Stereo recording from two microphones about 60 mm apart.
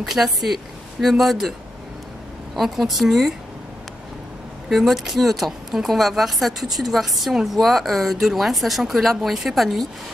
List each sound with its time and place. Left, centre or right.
0.0 s a woman's voice: centre
2.5 s a woman's voice: centre
4.6 s a woman's voice: centre